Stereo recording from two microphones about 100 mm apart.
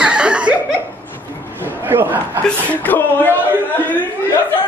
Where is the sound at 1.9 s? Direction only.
20° right (ahead or behind).